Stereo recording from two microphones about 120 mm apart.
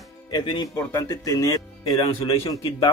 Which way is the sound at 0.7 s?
25° left (ahead or behind).